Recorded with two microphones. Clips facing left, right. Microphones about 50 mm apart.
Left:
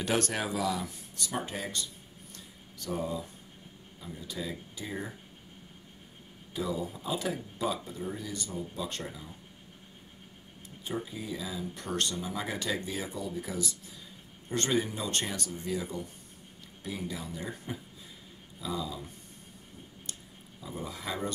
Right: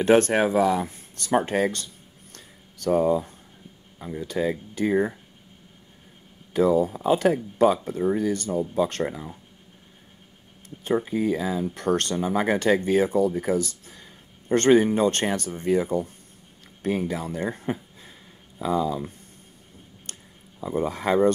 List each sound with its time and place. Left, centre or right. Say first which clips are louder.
0.0 s speech: right 12 dB; right
2.3 s a sound: right 3 dB; right
4.0 s speech: right 12 dB; right
6.5 s speech: right 14 dB; right
10.8 s speech: right 13 dB; right
20.6 s speech: right 13 dB; right